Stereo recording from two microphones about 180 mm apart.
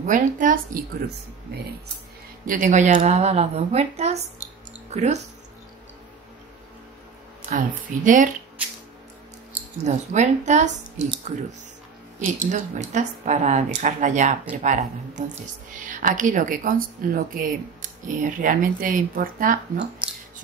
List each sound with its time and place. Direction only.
0.0 s speech: 45° right (ahead or behind)
2.4 s a woman's voice: 45° right (ahead or behind)
7.4 s speech: 45° right (ahead or behind)
9.5 s a sound: 10° right (ahead or behind)
9.8 s a woman's voice: 40° right (ahead or behind)
12.2 s speech: 45° right (ahead or behind)
20.1 s music: 5° right (ahead or behind)